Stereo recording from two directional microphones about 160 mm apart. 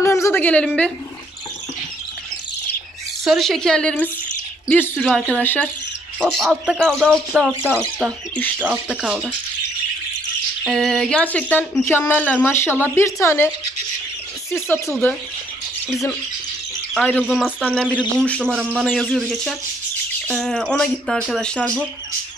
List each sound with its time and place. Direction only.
0.0 s a sound: 20° left (ahead or behind)
3.3 s speech: centre (ahead or behind)
6.4 s speech: centre (ahead or behind)
10.7 s speech: centre (ahead or behind)
14.5 s speech: 15° left (ahead or behind)
17.2 s speech: 5° right (ahead or behind)
18.6 s speech: 5° right (ahead or behind)
18.9 s speech: 10° left (ahead or behind)